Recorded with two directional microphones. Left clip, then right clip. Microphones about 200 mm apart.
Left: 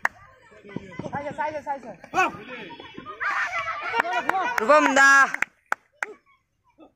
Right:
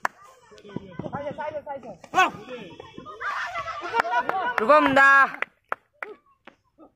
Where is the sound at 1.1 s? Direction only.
35° right (ahead or behind).